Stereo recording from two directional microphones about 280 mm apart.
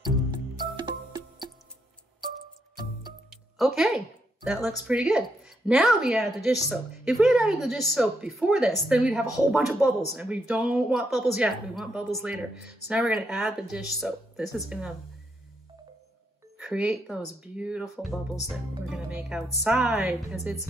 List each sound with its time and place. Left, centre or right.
0.7 s music: centre
2.7 s music: centre
3.3 s music: centre
4.5 s speech: centre
16.5 s speech: centre